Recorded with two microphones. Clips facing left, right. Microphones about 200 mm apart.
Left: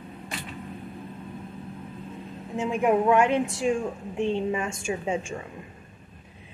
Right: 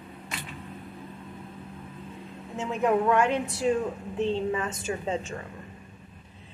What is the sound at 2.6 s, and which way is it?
A woman's voice, 15° left (ahead or behind).